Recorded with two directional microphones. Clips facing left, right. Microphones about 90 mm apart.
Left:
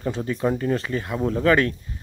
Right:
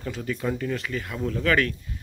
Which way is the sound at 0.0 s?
30° left (ahead or behind).